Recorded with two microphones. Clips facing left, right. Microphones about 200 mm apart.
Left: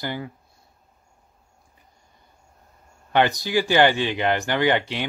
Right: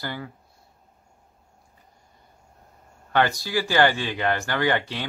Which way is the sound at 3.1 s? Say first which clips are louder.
Left 2 dB; 20° left (ahead or behind).